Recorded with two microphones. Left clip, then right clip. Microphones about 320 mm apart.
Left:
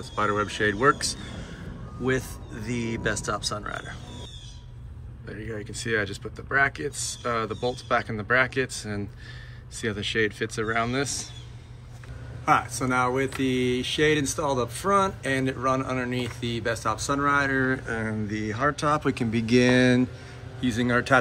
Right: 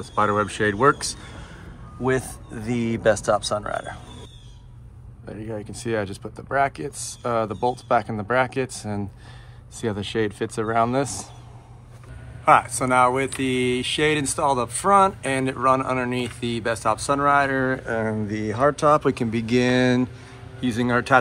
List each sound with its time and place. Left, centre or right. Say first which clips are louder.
0.0 s speech: right 4 dB; centre
5.3 s speech: right 3 dB; centre
12.4 s speech: right 6 dB; centre